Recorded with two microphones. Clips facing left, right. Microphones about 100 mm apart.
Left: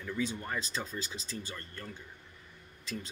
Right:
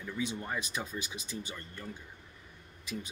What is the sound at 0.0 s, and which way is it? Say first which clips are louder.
Speech: left 1 dB; 15° right (ahead or behind).